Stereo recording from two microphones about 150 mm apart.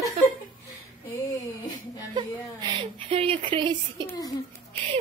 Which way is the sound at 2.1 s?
30° right (ahead or behind).